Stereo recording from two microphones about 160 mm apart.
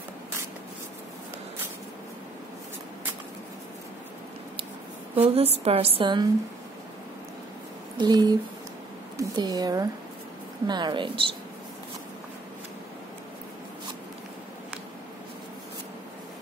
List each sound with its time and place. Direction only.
5.1 s a woman's voice: 40° right (ahead or behind)
8.0 s speech: 25° right (ahead or behind)